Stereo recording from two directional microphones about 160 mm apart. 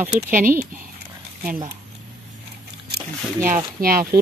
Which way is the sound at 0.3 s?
60° right (ahead or behind).